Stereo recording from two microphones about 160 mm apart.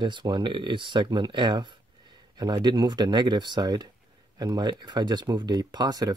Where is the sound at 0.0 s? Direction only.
30° right (ahead or behind).